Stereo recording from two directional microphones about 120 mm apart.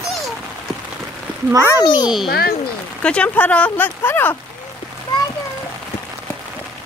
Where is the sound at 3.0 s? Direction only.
10° left (ahead or behind).